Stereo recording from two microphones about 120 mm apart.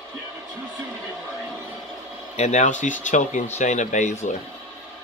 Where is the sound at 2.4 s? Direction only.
75° left (ahead or behind).